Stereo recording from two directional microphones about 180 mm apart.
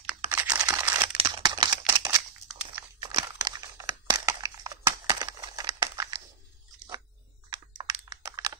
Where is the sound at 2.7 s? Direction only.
20° right (ahead or behind).